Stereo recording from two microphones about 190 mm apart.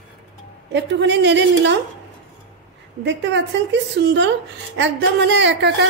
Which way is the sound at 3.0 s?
70° right (ahead or behind).